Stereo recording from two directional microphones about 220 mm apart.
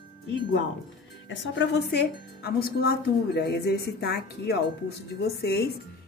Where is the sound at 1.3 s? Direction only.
55° left (ahead or behind).